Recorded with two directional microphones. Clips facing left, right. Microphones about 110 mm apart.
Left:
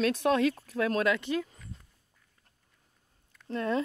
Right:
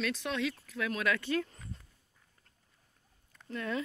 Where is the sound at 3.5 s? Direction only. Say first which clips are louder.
Left 6 dB; 30° left (ahead or behind).